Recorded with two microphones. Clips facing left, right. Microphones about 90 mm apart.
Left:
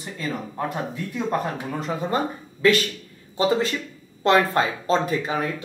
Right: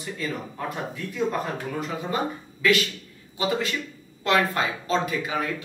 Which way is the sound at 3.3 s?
35° left (ahead or behind).